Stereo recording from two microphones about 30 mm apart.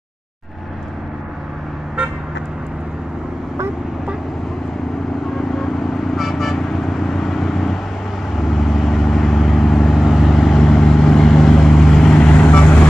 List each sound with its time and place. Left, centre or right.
5.5 s vehicle: centre
10.3 s vehicle: centre
12.3 s vehicle: left